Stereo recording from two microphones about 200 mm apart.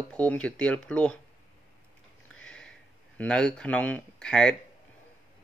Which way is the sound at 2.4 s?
5° left (ahead or behind).